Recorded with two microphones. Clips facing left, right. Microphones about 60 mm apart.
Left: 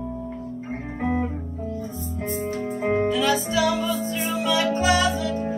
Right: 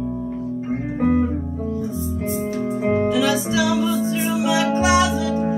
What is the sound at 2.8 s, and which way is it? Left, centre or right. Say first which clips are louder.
Music: right 3 dB; left.